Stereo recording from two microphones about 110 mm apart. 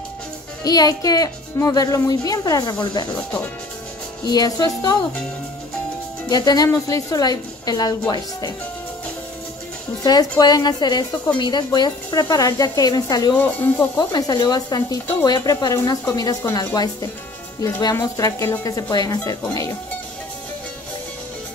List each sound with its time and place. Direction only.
0.7 s speech: 35° left (ahead or behind)
4.3 s speech: 35° left (ahead or behind)
6.2 s speech: 35° left (ahead or behind)
10.0 s speech: 40° left (ahead or behind)
13.4 s speech: 20° left (ahead or behind)
13.9 s speech: 40° left (ahead or behind)